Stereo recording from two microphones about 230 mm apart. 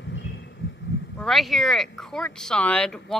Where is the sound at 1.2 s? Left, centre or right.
Centre.